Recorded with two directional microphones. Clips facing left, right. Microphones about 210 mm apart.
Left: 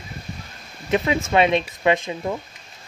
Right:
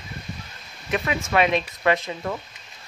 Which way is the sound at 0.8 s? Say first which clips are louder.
Left 5 dB; 25° left (ahead or behind).